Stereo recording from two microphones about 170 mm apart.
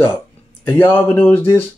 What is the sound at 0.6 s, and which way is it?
Speech, 10° left (ahead or behind).